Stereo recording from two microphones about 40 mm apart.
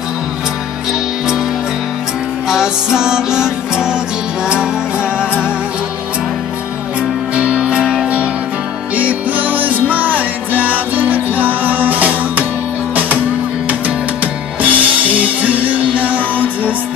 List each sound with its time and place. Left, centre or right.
2.4 s music: centre
7.0 s music: right
8.9 s music: right
13.7 s music: right